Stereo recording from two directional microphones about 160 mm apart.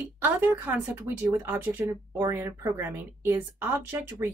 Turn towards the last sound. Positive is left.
turn(degrees=-15)  # may be behind; listen again after turning